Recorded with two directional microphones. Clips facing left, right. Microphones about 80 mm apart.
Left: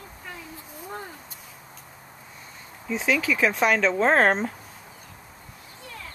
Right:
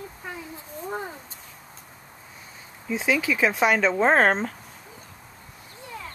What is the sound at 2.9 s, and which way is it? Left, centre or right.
Speech, centre.